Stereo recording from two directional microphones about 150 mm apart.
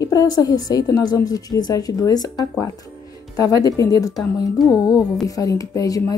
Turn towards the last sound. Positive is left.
turn(degrees=25)  # may be behind; listen again after turning